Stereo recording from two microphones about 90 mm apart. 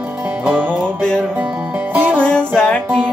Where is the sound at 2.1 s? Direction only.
10° left (ahead or behind).